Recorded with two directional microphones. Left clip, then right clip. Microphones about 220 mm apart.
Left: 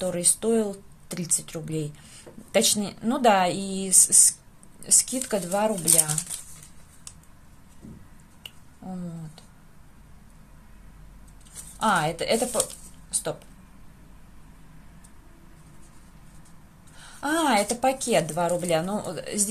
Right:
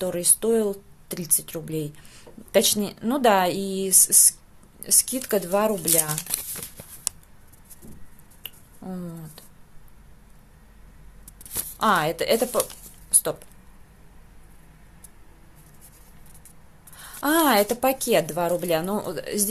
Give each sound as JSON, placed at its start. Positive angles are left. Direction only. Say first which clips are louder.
{"t": 0.0, "sound": "a woman's voice", "louder": "right 1 dB", "side_deg": -10}
{"t": 8.4, "sound": "a sound", "louder": "right 1 dB", "side_deg": -20}
{"t": 11.8, "sound": "a woman's voice", "louder": "right 2 dB", "side_deg": -15}
{"t": 16.9, "sound": "a woman's voice", "louder": "right 4 dB", "side_deg": -15}